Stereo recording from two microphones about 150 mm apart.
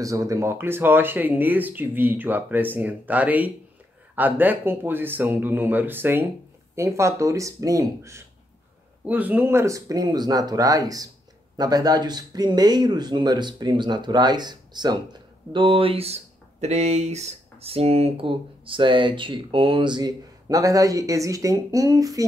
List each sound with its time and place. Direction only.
0.0 s speech: 20° right (ahead or behind)